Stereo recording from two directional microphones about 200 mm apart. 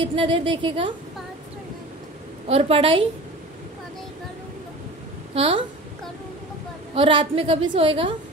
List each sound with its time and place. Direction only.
0.1 s a woman's voice: 25° right (ahead or behind)
2.4 s a woman's voice: 30° right (ahead or behind)
5.3 s a woman's voice: 25° right (ahead or behind)
7.0 s a woman's voice: 25° right (ahead or behind)